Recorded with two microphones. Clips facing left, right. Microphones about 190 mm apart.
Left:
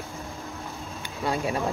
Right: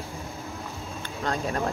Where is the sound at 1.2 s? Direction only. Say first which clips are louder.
Left 1 dB; 10° left (ahead or behind).